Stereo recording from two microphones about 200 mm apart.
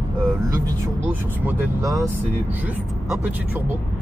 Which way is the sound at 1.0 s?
10° right (ahead or behind).